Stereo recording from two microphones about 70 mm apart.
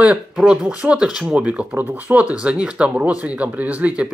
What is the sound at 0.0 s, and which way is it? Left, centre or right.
Speech, centre.